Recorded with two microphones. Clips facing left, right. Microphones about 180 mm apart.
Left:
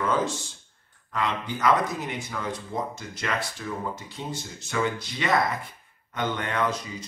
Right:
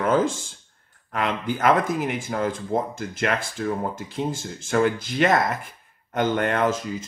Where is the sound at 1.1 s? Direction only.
50° right (ahead or behind).